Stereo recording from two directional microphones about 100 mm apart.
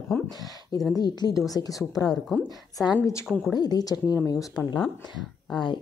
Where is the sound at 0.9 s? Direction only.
40° left (ahead or behind).